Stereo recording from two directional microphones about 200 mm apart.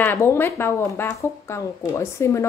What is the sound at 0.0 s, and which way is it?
Speech, 10° left (ahead or behind).